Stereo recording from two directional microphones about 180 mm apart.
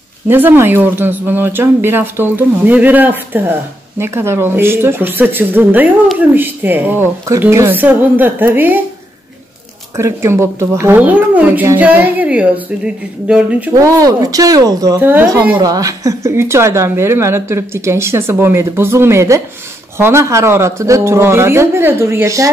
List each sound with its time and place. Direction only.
0.3 s a woman's voice: 10° right (ahead or behind)
9.9 s a woman's voice: 15° right (ahead or behind)
13.7 s a woman's voice: 20° right (ahead or behind)